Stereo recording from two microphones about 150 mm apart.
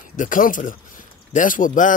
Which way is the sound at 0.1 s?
60° left (ahead or behind).